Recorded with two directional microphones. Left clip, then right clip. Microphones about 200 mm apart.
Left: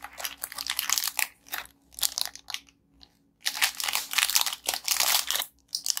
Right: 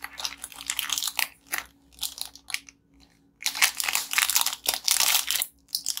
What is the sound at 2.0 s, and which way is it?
Crushing, 25° left (ahead or behind).